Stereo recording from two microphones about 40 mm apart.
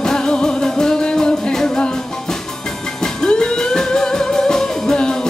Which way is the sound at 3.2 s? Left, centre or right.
Centre.